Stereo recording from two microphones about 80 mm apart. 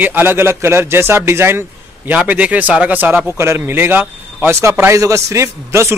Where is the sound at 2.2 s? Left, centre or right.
Centre.